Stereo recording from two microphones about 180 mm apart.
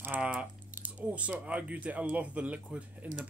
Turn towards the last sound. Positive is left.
turn(degrees=-5)  # may be behind; listen again after turning